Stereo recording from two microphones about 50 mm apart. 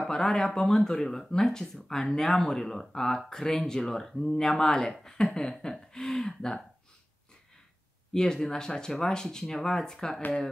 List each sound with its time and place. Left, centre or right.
0.1 s speech: centre
8.1 s speech: centre